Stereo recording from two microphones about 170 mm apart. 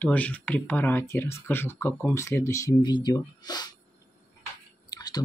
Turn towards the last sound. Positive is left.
turn(degrees=25)  # may be behind; listen again after turning